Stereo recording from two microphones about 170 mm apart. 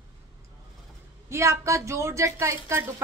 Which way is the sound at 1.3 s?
15° right (ahead or behind).